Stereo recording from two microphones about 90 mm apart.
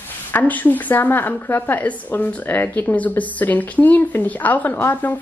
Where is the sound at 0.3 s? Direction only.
20° left (ahead or behind).